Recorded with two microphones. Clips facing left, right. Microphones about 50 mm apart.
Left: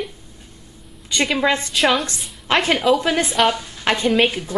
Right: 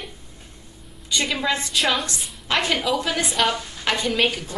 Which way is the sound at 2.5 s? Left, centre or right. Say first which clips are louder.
Left 5 dB; left.